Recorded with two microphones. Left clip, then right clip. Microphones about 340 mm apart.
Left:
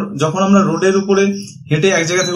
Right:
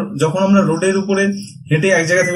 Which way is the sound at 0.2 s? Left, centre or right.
Centre.